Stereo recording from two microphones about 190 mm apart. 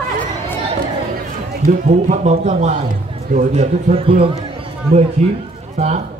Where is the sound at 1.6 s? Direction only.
40° right (ahead or behind).